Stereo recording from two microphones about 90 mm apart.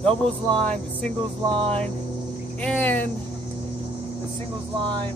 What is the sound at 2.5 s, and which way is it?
Speech, 20° left (ahead or behind).